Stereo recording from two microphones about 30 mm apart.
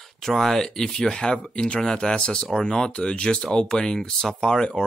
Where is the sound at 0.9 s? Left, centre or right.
Left.